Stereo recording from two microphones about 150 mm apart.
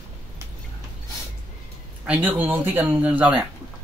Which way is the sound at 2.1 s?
10° right (ahead or behind).